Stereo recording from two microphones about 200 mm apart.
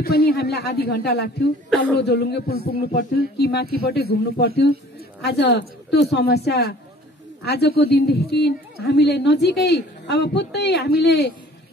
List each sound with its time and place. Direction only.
0.0 s a woman's voice: 50° left (ahead or behind)